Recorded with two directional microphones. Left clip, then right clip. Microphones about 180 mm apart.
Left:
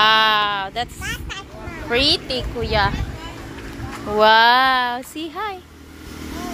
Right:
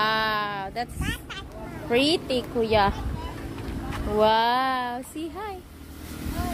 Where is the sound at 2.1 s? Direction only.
40° right (ahead or behind).